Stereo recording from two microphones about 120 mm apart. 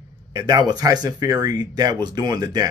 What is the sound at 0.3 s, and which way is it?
Speech, 30° right (ahead or behind).